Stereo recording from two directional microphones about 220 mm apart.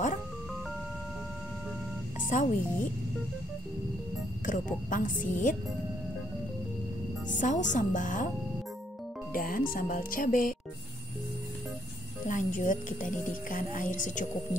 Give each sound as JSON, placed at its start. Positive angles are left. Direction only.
{"t": 2.2, "sound": "a woman's voice", "side_deg": 35}
{"t": 4.5, "sound": "a woman's voice", "side_deg": 35}
{"t": 7.3, "sound": "a woman's voice", "side_deg": 35}
{"t": 9.3, "sound": "a woman's voice", "side_deg": 40}
{"t": 12.3, "sound": "a woman's voice", "side_deg": 35}